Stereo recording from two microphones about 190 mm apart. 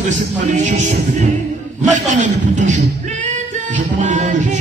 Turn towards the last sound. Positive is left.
turn(degrees=-40)  # may be behind; listen again after turning